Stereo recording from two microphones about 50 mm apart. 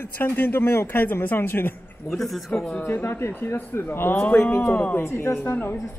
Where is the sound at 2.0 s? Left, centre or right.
Centre.